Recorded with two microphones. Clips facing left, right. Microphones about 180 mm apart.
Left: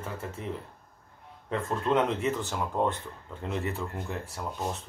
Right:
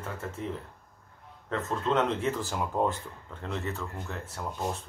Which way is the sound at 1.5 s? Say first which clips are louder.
Left 1 dB; 10° left (ahead or behind).